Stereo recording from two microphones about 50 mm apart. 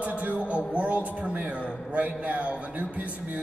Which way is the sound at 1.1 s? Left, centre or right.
Right.